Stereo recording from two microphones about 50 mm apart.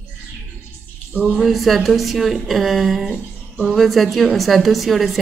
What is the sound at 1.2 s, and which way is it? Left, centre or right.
Speech, centre.